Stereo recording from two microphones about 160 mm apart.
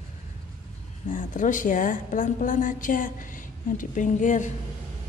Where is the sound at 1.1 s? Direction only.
55° left (ahead or behind).